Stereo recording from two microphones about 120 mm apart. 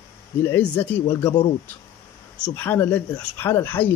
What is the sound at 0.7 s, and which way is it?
Speech, 35° left (ahead or behind).